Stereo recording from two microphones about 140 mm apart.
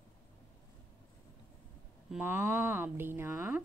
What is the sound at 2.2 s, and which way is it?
A woman's voice, 15° right (ahead or behind).